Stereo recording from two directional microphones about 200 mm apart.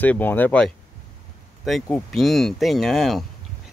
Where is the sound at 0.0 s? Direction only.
10° left (ahead or behind).